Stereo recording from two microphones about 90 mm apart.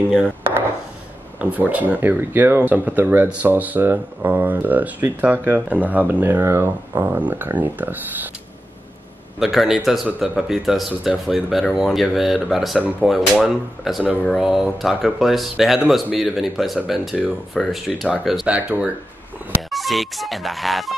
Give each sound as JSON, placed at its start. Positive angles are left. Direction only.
{"t": 1.4, "sound": "speech", "side_deg": -15}
{"t": 9.4, "sound": "speech", "side_deg": 0}
{"t": 18.5, "sound": "speech", "side_deg": -10}
{"t": 19.7, "sound": "speech", "side_deg": 0}